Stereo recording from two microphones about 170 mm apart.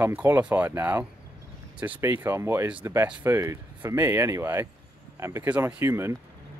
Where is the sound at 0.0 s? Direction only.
10° right (ahead or behind).